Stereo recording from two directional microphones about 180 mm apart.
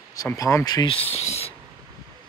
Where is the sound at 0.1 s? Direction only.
20° left (ahead or behind).